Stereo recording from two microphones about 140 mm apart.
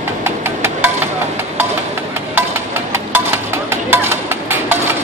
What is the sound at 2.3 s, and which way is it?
Music, 15° right (ahead or behind).